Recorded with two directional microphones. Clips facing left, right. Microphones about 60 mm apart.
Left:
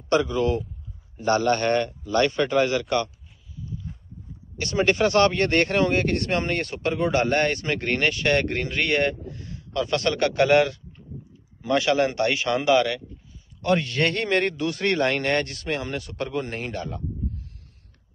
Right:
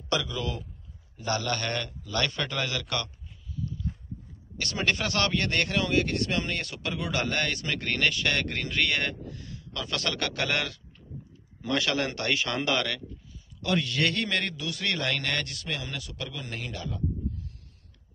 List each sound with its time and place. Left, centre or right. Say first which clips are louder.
0.1 s a man's voice: left 9 dB; left
3.6 s walk: right 1 dB; centre
4.6 s speech: left 7 dB; left
13.6 s a man's voice: left 5 dB; left